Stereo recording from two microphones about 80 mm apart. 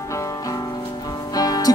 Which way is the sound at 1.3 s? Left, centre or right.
Left.